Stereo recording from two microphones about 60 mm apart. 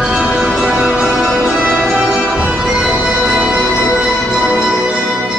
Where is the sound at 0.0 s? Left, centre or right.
Centre.